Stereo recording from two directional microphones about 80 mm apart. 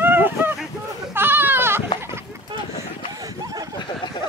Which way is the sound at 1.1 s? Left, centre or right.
Right.